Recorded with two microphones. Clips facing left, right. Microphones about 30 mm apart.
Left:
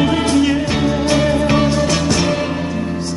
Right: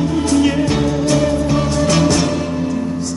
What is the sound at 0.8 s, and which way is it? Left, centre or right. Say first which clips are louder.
Music: even; left.